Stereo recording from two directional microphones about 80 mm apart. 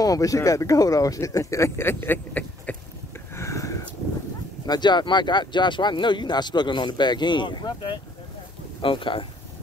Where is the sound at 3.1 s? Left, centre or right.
Left.